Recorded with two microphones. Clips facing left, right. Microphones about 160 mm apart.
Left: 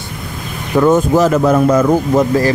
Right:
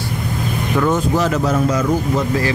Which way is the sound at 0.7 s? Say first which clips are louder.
Left 7 dB; 45° left (ahead or behind).